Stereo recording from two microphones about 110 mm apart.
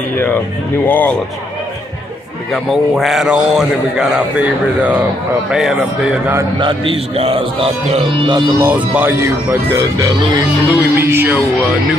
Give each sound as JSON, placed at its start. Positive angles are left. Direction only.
{"t": 0.8, "sound": "speech", "side_deg": 15}
{"t": 2.5, "sound": "a man's voice", "side_deg": 0}
{"t": 5.5, "sound": "a man's voice", "side_deg": -5}
{"t": 6.6, "sound": "a man's voice", "side_deg": -55}
{"t": 8.5, "sound": "speech", "side_deg": -15}
{"t": 9.7, "sound": "speech", "side_deg": -30}
{"t": 10.7, "sound": "speech", "side_deg": -20}